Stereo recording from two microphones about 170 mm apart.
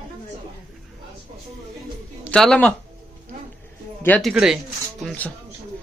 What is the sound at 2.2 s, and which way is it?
Speech, 5° left (ahead or behind).